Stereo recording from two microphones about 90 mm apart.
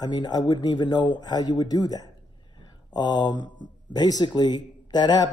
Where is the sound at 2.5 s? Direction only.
50° left (ahead or behind).